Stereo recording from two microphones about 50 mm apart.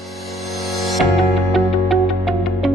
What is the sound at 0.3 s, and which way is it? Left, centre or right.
Music, centre.